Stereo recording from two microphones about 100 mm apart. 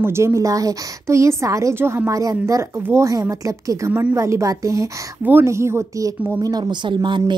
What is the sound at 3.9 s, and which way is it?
Speech, 20° right (ahead or behind).